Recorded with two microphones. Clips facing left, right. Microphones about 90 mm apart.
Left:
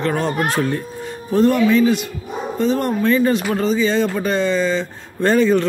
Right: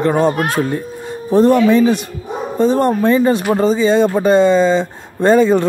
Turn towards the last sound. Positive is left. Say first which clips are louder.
# right 4 dB
turn(degrees=-20)  # may be behind; listen again after turning